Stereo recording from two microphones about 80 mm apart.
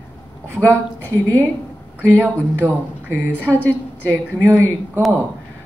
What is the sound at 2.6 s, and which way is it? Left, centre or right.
Speech, right.